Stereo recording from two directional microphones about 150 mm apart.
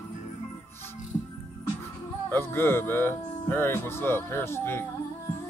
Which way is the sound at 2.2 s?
15° left (ahead or behind).